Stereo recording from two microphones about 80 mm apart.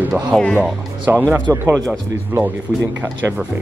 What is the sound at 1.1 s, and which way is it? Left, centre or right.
Speech, right.